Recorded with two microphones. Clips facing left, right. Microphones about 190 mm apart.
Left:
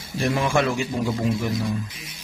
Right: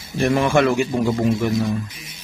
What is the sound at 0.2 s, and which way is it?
Speech, 60° right (ahead or behind).